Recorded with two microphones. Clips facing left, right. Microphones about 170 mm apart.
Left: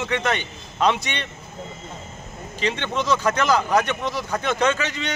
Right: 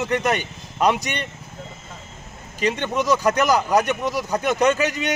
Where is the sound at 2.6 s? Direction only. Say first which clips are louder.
Right 3 dB; 10° right (ahead or behind).